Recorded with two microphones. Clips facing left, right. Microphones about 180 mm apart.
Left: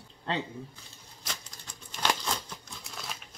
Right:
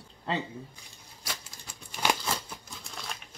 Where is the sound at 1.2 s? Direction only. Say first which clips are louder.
Right 1 dB; 10° right (ahead or behind).